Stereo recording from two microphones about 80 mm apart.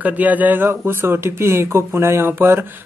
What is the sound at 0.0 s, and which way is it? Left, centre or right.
Speech, right.